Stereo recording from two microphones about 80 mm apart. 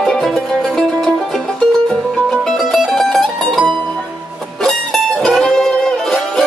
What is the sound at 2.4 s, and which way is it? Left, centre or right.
Music, centre.